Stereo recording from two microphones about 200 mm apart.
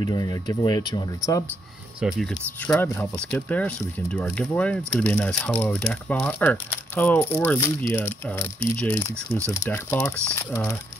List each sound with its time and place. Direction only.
0.0 s speech: 20° left (ahead or behind)
2.0 s speech: centre (ahead or behind)
2.7 s speech: 10° left (ahead or behind)